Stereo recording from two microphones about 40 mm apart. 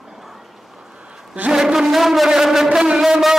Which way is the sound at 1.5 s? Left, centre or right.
Centre.